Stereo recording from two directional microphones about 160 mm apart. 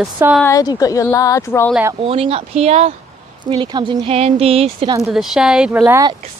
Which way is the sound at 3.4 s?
25° right (ahead or behind).